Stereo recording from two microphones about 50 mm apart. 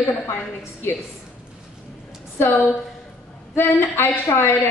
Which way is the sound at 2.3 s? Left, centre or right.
Left.